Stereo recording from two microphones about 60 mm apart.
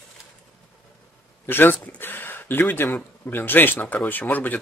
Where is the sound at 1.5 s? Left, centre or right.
Left.